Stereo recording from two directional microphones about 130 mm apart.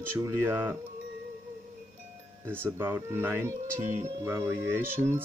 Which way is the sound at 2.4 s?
15° right (ahead or behind).